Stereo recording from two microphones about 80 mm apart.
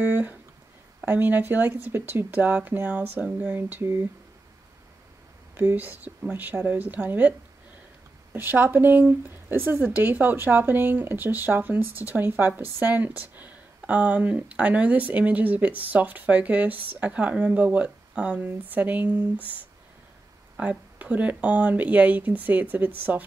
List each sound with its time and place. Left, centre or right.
0.0 s a woman's voice: right
5.5 s a woman's voice: right
20.5 s a woman's voice: centre